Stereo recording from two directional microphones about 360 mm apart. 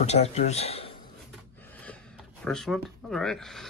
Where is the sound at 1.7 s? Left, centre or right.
Centre.